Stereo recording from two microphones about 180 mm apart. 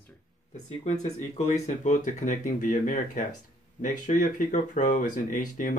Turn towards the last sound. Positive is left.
turn(degrees=45)  # may be behind; listen again after turning